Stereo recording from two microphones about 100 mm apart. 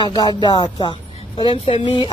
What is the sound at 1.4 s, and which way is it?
Speech, 65° left (ahead or behind).